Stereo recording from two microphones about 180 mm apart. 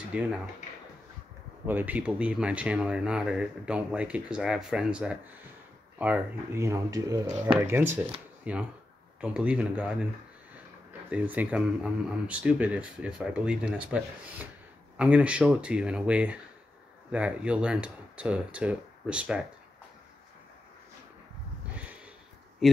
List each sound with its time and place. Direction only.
0.1 s speech: 5° right (ahead or behind)
1.7 s speech: 10° right (ahead or behind)
21.7 s a sound: 5° right (ahead or behind)
22.6 s speech: centre (ahead or behind)